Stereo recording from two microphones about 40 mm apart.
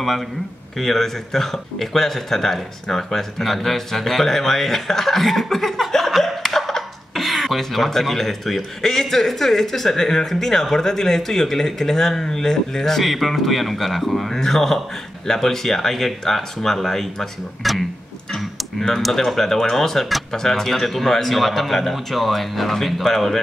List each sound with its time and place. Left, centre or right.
0.7 s speech: centre